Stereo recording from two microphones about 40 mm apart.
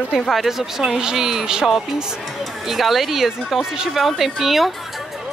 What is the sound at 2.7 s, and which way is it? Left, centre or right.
Speech, centre.